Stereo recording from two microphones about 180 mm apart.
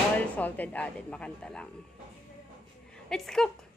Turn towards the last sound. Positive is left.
turn(degrees=0)  # may be behind; listen again after turning